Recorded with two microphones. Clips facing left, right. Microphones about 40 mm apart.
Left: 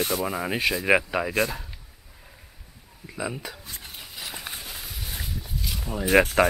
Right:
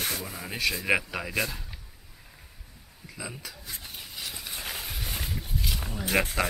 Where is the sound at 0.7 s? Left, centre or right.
Centre.